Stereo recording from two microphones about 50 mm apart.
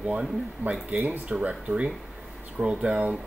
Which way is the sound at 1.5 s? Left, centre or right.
Centre.